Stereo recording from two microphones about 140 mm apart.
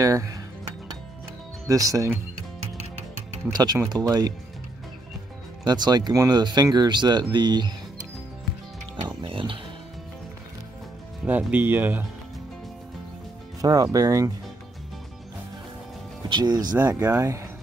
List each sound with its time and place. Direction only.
0.0 s speech: 25° right (ahead or behind)
1.7 s speech: 25° right (ahead or behind)
3.0 s music: 50° right (ahead or behind)
3.5 s speech: 30° right (ahead or behind)
5.6 s speech: 30° right (ahead or behind)
9.2 s speech: 40° right (ahead or behind)
11.2 s speech: 10° right (ahead or behind)
13.6 s speech: 25° right (ahead or behind)
16.3 s speech: 30° right (ahead or behind)
16.7 s speech: 10° right (ahead or behind)